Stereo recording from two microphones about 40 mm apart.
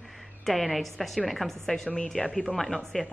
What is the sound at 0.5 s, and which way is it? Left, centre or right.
A woman's voice, centre.